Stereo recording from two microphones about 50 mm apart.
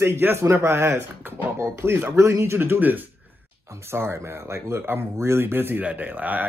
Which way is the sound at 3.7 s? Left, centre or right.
Right.